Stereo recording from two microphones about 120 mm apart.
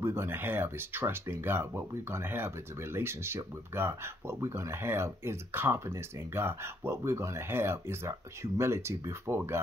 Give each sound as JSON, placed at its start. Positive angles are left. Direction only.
{"t": 0.0, "sound": "speech", "side_deg": -20}